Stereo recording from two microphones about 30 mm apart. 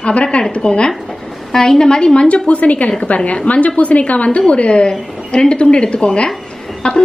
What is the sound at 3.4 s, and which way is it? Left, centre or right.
A woman's voice, left.